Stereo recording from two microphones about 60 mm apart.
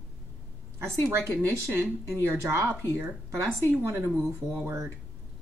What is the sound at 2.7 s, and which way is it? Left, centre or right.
Speech, right.